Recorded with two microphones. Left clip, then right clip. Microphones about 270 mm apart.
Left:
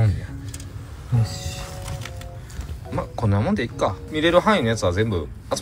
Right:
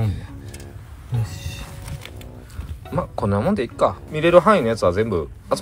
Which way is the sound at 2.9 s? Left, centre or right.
Centre.